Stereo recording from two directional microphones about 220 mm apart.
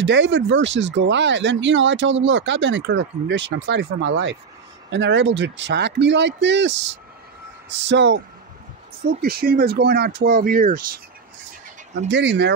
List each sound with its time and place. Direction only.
0.0 s speech: 55° right (ahead or behind)
9.2 s speech: 45° right (ahead or behind)
12.1 s speech: 50° right (ahead or behind)